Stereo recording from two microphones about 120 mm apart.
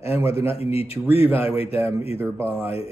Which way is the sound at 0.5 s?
55° left (ahead or behind).